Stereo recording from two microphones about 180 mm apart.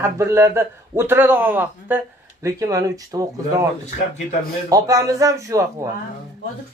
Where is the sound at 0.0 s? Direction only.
15° right (ahead or behind).